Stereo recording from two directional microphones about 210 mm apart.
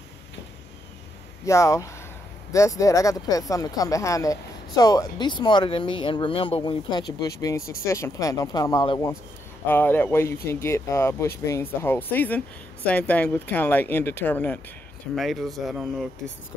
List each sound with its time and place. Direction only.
1.4 s speech: 15° left (ahead or behind)